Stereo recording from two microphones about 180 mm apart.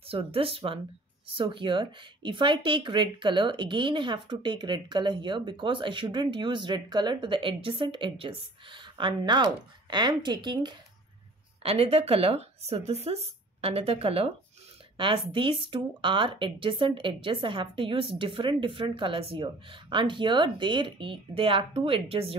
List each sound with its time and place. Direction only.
0.0 s speech: 30° right (ahead or behind)
15.3 s speech: 25° right (ahead or behind)